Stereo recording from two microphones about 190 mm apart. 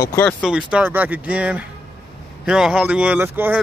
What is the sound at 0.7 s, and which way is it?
Speech, 10° right (ahead or behind).